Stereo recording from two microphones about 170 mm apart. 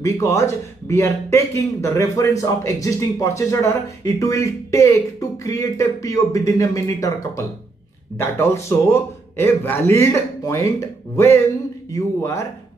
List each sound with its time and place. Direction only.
0.0 s a man's voice: 20° left (ahead or behind)